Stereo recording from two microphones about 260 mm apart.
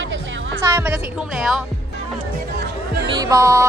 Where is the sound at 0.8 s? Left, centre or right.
Centre.